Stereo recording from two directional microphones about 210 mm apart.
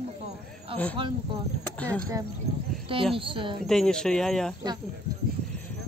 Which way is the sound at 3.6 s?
5° left (ahead or behind).